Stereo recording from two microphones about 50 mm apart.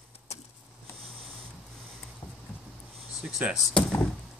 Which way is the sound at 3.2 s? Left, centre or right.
Centre.